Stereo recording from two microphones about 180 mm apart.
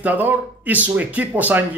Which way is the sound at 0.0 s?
10° right (ahead or behind).